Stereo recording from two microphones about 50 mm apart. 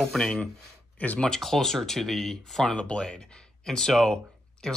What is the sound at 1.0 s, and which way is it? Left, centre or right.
Speech, left.